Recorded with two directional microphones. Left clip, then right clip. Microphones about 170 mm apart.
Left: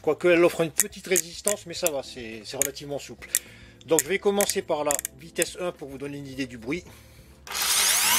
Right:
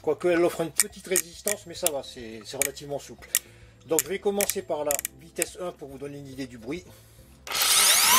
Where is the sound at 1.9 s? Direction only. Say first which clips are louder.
Left 2 dB; 15° left (ahead or behind).